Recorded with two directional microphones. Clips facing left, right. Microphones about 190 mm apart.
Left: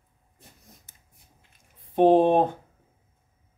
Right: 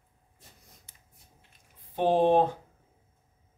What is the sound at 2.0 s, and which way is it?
Speech, 55° left (ahead or behind).